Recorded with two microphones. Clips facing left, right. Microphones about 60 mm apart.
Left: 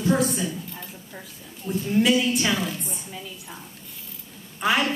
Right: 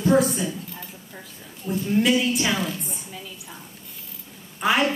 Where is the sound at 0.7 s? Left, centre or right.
Centre.